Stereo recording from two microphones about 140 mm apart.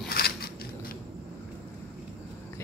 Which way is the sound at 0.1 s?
90° left.